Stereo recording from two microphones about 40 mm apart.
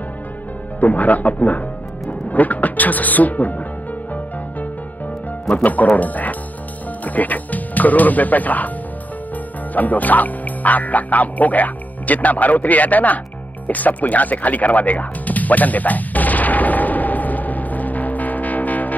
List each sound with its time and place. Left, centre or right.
0.7 s speech: left
5.5 s speech: left
9.8 s speech: left
13.7 s music: left